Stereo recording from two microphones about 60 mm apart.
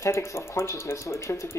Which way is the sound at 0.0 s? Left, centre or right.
Left.